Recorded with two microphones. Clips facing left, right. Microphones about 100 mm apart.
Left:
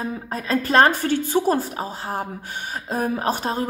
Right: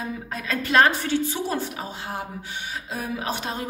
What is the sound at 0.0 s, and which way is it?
A woman's voice, 35° left (ahead or behind).